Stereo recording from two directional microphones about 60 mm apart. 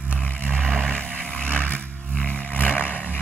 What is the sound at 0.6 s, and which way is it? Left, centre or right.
Vehicle, centre.